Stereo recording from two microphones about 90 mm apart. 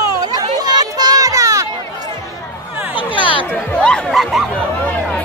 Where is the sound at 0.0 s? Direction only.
45° right (ahead or behind).